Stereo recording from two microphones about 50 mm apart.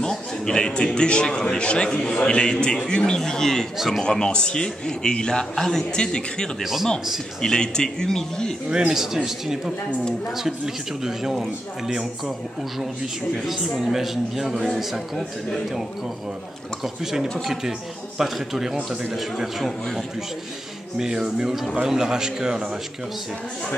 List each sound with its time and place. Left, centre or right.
0.0 s a man's voice: centre
3.2 s a man's voice: centre
6.6 s a man's voice: centre
7.4 s a man's voice: centre
8.6 s a man's voice: centre
16.8 s a man's voice: centre
21.0 s a man's voice: centre